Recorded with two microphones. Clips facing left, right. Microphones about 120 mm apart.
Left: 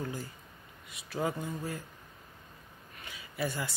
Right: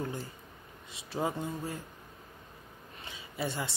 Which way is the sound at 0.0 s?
25° right (ahead or behind).